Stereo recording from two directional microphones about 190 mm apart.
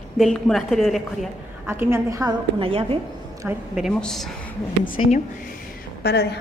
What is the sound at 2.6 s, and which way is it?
Speech, 30° right (ahead or behind).